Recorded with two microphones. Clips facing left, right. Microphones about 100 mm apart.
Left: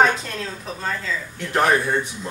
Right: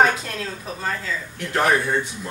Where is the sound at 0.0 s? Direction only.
5° right (ahead or behind).